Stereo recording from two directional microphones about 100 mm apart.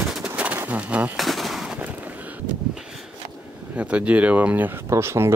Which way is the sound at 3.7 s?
10° right (ahead or behind).